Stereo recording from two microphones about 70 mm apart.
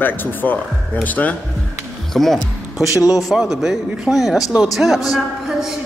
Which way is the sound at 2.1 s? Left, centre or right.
Centre.